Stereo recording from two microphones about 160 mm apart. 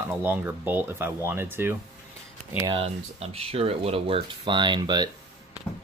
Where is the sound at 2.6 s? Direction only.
35° right (ahead or behind).